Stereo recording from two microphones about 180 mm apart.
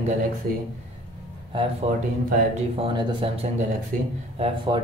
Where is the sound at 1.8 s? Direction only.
35° right (ahead or behind).